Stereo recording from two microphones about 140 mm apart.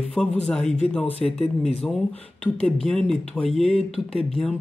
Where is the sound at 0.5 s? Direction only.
50° left (ahead or behind).